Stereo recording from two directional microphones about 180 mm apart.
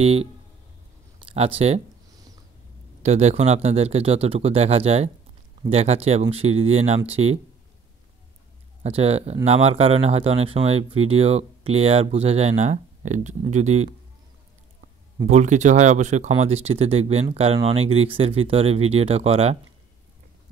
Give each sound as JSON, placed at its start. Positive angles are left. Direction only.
{"t": 0.0, "sound": "speech", "side_deg": -35}
{"t": 3.0, "sound": "speech", "side_deg": -40}
{"t": 8.8, "sound": "speech", "side_deg": -35}
{"t": 15.2, "sound": "speech", "side_deg": -40}